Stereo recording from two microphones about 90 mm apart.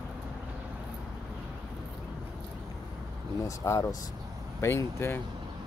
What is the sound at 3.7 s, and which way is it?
Speech, 35° left (ahead or behind).